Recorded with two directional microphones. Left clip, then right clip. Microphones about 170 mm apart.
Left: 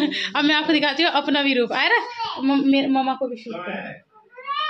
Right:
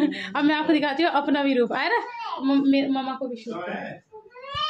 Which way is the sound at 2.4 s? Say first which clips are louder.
Left 2 dB; 35° left (ahead or behind).